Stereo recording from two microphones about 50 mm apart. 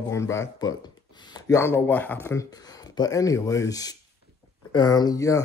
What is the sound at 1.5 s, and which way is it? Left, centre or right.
Speech, left.